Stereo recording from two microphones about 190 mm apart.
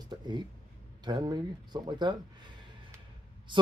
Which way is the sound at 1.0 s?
20° right (ahead or behind).